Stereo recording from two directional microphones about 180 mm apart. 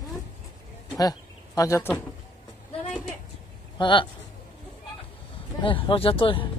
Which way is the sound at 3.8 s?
25° left (ahead or behind).